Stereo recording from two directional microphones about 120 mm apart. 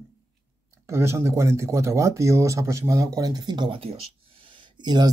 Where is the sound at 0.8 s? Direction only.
20° right (ahead or behind).